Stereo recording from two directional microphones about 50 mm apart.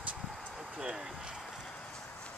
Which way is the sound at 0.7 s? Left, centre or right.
Centre.